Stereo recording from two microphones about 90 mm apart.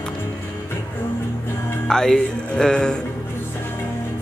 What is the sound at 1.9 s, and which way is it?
Speech, 5° left (ahead or behind).